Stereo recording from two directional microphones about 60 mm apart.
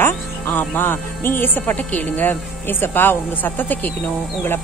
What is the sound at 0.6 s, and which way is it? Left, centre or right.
Speech, left.